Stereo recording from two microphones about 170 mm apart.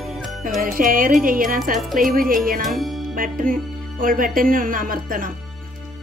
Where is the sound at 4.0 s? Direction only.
55° right (ahead or behind).